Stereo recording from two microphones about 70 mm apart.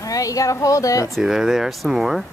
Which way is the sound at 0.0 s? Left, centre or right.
Left.